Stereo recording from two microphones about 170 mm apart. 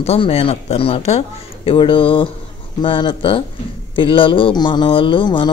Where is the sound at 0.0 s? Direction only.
35° left (ahead or behind).